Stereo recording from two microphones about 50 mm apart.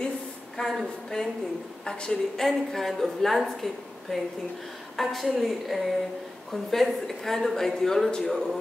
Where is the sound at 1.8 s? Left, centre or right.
Centre.